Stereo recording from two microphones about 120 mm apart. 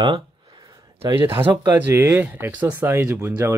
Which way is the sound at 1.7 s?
20° right (ahead or behind).